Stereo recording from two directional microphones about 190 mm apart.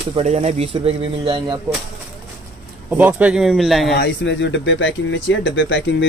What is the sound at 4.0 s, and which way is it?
Speech, 70° left (ahead or behind).